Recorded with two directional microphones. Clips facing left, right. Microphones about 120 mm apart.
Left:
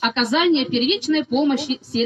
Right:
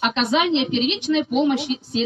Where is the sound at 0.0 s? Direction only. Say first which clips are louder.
Even; 25° right (ahead or behind).